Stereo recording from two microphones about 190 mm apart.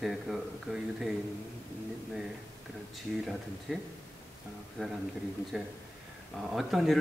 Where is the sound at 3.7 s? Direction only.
Centre (ahead or behind).